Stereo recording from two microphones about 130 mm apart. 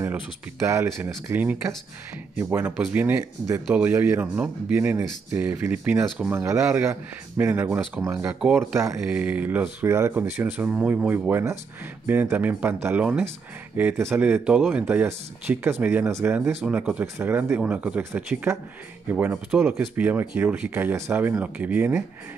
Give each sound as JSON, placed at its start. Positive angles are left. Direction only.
{"t": 0.7, "sound": "speech", "side_deg": -20}
{"t": 2.9, "sound": "speech", "side_deg": -10}
{"t": 6.2, "sound": "speech", "side_deg": -20}